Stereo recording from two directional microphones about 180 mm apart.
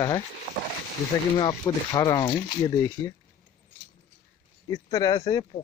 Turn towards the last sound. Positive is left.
turn(degrees=20)  # may be behind; listen again after turning